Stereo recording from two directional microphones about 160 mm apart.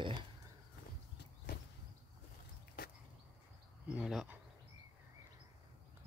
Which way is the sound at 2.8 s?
70° left (ahead or behind).